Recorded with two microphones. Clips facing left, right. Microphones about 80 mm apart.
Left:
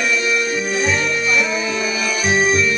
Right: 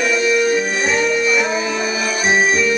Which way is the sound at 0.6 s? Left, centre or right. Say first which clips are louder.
Right 1 dB; right.